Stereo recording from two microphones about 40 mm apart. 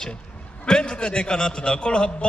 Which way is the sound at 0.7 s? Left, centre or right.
Left.